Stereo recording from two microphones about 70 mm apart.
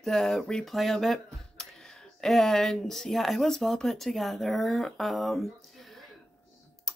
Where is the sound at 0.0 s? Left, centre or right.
Centre.